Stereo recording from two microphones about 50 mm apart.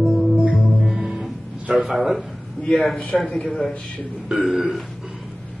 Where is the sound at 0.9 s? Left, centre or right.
Centre.